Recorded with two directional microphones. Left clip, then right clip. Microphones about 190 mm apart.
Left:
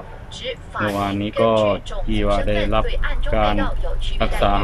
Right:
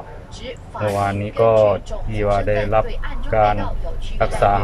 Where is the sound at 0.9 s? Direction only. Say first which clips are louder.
Right 3 dB; 10° left (ahead or behind).